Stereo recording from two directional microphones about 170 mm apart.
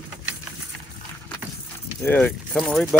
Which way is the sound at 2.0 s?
10° left (ahead or behind).